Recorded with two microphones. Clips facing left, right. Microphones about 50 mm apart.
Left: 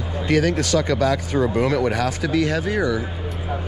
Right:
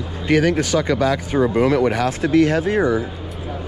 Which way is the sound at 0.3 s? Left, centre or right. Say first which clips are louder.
Right 2 dB; right.